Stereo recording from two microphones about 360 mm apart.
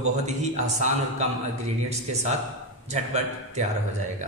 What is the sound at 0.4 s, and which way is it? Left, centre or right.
Speech, centre.